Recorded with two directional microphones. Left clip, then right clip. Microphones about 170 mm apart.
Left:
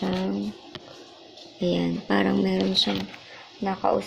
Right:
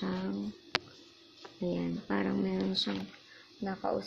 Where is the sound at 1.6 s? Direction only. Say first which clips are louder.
Left 10 dB; 5° right (ahead or behind).